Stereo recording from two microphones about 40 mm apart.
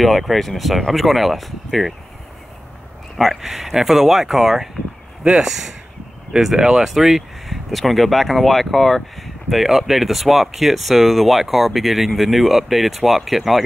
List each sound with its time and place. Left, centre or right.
0.0 s speech: centre
3.3 s speech: centre